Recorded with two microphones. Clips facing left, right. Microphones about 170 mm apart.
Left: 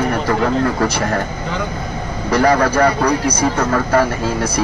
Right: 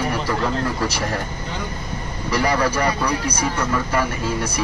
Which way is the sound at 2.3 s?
50° left (ahead or behind).